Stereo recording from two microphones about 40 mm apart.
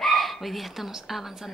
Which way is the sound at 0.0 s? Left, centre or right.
Centre.